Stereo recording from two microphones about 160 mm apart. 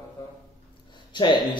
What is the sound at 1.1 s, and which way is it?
Speech, 30° left (ahead or behind).